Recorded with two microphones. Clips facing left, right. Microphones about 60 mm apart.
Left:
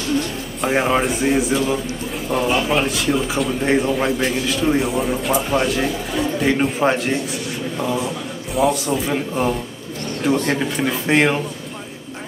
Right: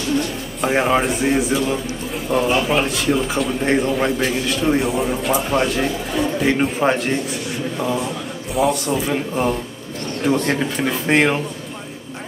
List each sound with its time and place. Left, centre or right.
0.6 s speech: centre